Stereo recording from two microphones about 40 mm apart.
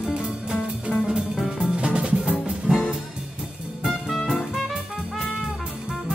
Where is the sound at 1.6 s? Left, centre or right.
Right.